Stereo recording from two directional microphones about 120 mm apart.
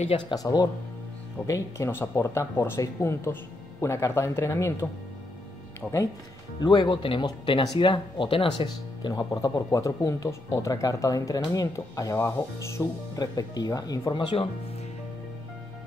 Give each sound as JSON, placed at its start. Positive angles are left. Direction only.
{"t": 0.3, "sound": "speech", "side_deg": 30}
{"t": 1.5, "sound": "speech", "side_deg": 20}
{"t": 5.8, "sound": "speech", "side_deg": 20}
{"t": 6.6, "sound": "speech", "side_deg": 40}